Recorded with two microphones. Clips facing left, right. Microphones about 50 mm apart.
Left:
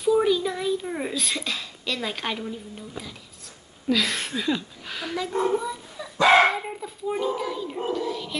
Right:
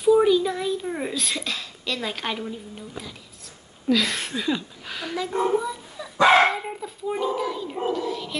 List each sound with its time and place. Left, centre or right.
0.0 s a child's voice: centre